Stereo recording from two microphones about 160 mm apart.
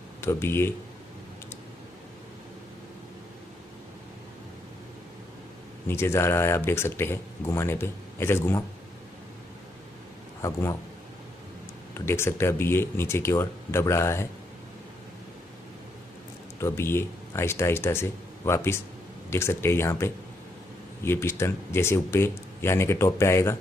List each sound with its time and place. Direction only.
0.2 s speech: 15° left (ahead or behind)
5.9 s speech: 15° left (ahead or behind)
10.4 s a man's voice: 20° left (ahead or behind)
11.9 s speech: 15° left (ahead or behind)
16.5 s speech: 15° left (ahead or behind)